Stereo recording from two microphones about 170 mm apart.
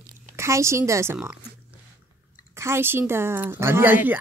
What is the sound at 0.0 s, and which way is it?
Speech, 15° right (ahead or behind).